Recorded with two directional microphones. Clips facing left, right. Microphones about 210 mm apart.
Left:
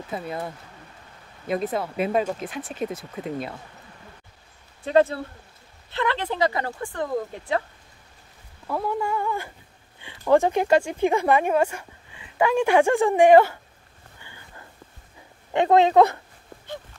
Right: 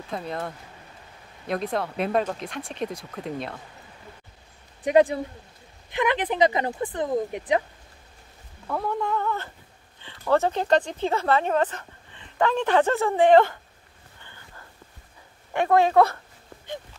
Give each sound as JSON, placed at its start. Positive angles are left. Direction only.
{"t": 0.1, "sound": "speech", "side_deg": 5}
{"t": 1.5, "sound": "speech", "side_deg": 5}
{"t": 4.8, "sound": "a woman's voice", "side_deg": -15}
{"t": 8.6, "sound": "a sound", "side_deg": 5}
{"t": 9.9, "sound": "speech", "side_deg": 15}
{"t": 15.5, "sound": "speech", "side_deg": 20}